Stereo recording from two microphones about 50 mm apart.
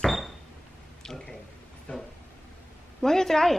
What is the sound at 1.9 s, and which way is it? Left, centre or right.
Vehicle, left.